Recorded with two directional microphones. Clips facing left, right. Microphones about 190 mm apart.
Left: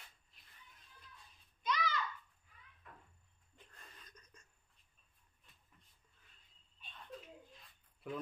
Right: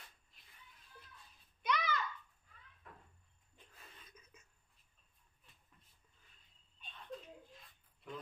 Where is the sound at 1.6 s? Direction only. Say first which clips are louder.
Right 1 dB; 65° right (ahead or behind).